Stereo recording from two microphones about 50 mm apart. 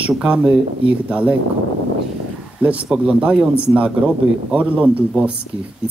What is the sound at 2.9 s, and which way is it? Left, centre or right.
Speech, centre.